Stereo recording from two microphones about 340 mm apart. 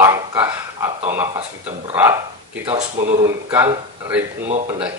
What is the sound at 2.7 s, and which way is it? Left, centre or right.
Speech, centre.